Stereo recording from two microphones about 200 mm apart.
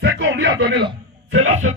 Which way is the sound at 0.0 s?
65° right (ahead or behind).